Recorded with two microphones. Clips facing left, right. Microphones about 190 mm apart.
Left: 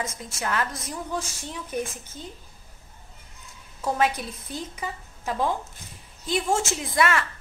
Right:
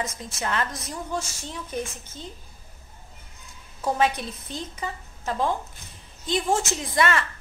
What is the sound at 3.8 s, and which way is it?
A woman's voice, 5° left (ahead or behind).